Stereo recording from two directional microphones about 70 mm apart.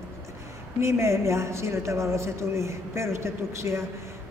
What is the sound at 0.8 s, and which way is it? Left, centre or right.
A man's voice, right.